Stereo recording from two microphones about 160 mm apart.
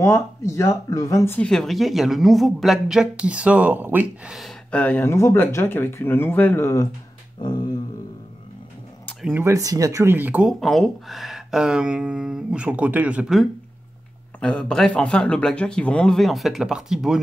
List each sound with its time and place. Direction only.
0.0 s speech: 20° left (ahead or behind)
7.4 s a sound: 25° left (ahead or behind)
9.2 s speech: 15° right (ahead or behind)
10.6 s speech: centre (ahead or behind)
14.4 s speech: 5° left (ahead or behind)